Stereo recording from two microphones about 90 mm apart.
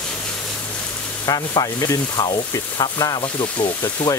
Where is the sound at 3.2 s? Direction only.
70° left (ahead or behind).